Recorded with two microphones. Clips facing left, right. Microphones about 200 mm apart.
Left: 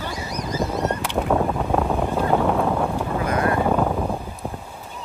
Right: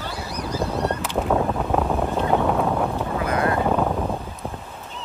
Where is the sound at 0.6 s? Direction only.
15° left (ahead or behind).